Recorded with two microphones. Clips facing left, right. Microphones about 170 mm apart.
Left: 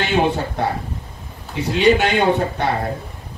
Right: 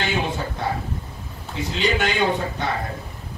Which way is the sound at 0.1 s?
65° left (ahead or behind).